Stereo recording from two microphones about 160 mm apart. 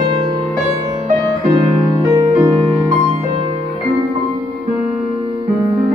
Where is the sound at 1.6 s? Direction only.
20° right (ahead or behind).